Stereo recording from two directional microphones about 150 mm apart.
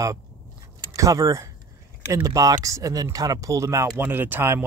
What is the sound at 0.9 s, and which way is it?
Speech, 20° right (ahead or behind).